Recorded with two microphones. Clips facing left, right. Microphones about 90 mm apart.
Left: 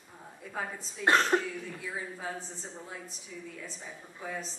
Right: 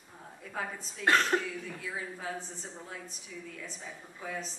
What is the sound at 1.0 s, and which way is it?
Speech, 25° left (ahead or behind).